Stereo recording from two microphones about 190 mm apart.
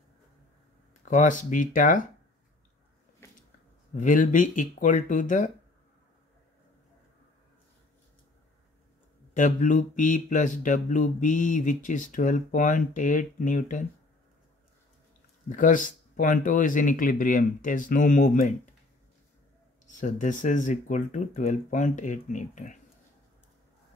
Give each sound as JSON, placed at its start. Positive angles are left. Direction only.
{"t": 1.0, "sound": "speech", "side_deg": 40}
{"t": 3.9, "sound": "speech", "side_deg": 45}
{"t": 9.3, "sound": "speech", "side_deg": 40}
{"t": 15.5, "sound": "speech", "side_deg": 45}
{"t": 20.0, "sound": "speech", "side_deg": 40}